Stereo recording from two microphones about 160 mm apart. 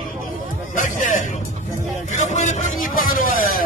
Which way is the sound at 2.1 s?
50° left (ahead or behind).